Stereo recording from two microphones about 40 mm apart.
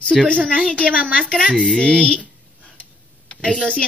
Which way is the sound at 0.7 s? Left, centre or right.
Left.